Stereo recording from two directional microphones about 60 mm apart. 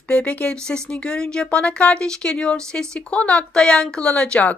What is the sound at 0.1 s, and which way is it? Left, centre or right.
Speech, left.